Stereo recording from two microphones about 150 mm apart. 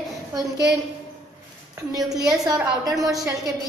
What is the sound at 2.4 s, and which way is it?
A woman's voice, 25° right (ahead or behind).